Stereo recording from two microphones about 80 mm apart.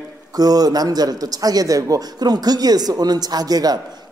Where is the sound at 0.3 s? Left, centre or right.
Right.